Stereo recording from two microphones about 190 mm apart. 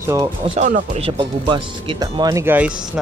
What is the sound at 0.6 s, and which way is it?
Speech, 40° right (ahead or behind).